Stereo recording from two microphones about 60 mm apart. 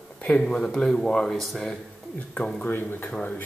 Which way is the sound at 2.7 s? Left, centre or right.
Left.